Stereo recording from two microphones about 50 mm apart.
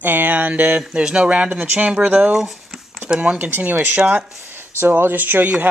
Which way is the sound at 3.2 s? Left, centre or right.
Right.